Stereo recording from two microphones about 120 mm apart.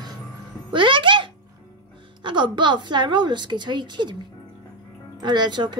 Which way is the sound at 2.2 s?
40° right (ahead or behind).